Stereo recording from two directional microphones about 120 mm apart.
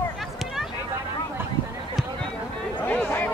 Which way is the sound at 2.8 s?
15° left (ahead or behind).